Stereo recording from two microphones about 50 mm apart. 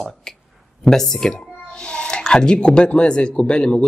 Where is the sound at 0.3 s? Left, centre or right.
Centre.